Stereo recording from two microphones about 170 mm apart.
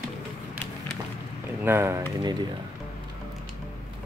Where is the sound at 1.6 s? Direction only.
15° right (ahead or behind).